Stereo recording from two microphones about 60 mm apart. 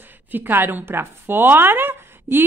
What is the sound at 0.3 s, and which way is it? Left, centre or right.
Speech, right.